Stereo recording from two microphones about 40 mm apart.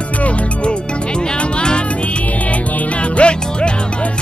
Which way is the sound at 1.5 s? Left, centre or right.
Left.